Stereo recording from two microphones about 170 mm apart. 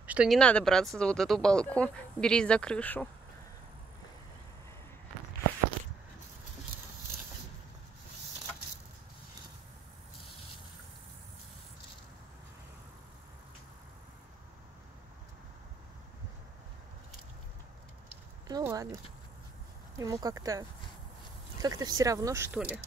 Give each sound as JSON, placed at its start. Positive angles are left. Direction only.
{"t": 0.0, "sound": "speech", "side_deg": -5}
{"t": 0.4, "sound": "speech", "side_deg": 5}
{"t": 18.5, "sound": "a sound", "side_deg": -20}
{"t": 20.0, "sound": "speech", "side_deg": -20}